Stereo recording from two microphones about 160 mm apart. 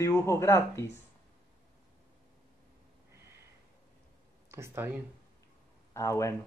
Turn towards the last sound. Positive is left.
turn(degrees=20)  # may be behind; listen again after turning